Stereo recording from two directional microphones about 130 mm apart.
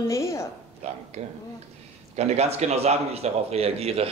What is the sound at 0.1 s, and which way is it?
Speech, 20° left (ahead or behind).